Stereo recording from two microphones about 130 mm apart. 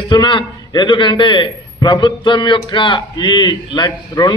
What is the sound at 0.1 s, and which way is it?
A man's voice, 35° left (ahead or behind).